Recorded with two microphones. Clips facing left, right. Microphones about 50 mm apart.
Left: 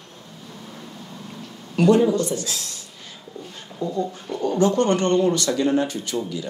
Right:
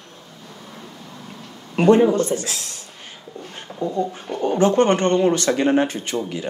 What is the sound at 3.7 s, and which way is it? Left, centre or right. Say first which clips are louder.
Speech: right 2 dB; right.